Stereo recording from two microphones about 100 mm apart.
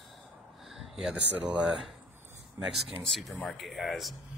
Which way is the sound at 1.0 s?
10° right (ahead or behind).